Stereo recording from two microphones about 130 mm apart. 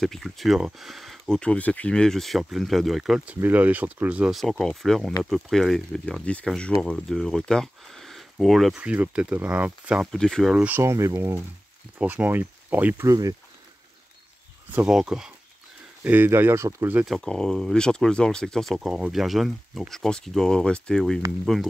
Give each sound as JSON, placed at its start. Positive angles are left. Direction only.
{"t": 0.0, "sound": "speech", "side_deg": 0}
{"t": 3.3, "sound": "speech", "side_deg": -15}
{"t": 10.1, "sound": "speech", "side_deg": 5}
{"t": 10.5, "sound": "speech", "side_deg": -10}
{"t": 10.8, "sound": "speech", "side_deg": -25}
{"t": 14.9, "sound": "speech", "side_deg": -5}
{"t": 17.0, "sound": "speech", "side_deg": 0}